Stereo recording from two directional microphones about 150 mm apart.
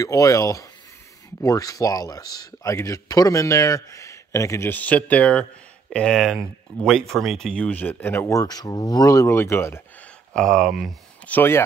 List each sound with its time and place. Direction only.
0.0 s speech: 20° left (ahead or behind)
10.3 s speech: centre (ahead or behind)
11.2 s speech: 15° left (ahead or behind)